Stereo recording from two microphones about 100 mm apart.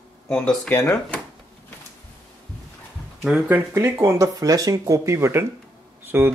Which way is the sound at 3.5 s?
25° right (ahead or behind).